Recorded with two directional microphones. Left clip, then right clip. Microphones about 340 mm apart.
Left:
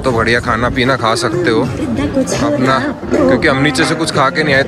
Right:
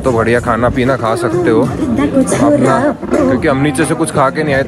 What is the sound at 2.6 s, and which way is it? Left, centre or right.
Speech, centre.